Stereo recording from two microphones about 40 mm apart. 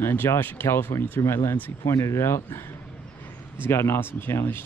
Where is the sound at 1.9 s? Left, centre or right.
Left.